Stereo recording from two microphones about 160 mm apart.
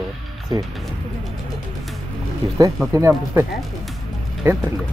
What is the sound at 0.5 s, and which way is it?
Speech, 30° right (ahead or behind).